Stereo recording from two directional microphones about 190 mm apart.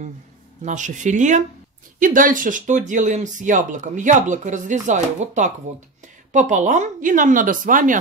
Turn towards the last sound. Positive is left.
turn(degrees=-45)  # may be behind; listen again after turning